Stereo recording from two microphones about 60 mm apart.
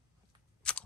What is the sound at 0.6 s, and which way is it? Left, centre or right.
Scissors, centre.